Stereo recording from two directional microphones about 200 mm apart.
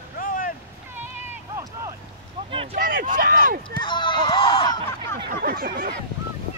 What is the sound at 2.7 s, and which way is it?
Speech, 45° right (ahead or behind).